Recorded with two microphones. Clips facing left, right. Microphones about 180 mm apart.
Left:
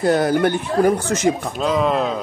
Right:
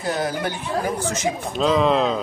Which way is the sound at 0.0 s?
55° left (ahead or behind).